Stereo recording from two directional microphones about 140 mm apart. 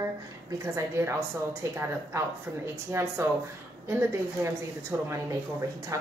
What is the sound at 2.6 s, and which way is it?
Speech, 15° right (ahead or behind).